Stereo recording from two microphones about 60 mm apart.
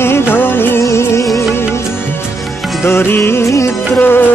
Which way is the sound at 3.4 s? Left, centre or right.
Left.